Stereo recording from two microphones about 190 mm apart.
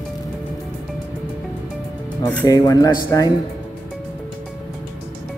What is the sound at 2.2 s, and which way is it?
Speech, 15° left (ahead or behind).